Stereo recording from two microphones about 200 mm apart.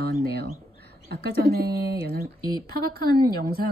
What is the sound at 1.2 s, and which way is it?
Speech, 50° right (ahead or behind).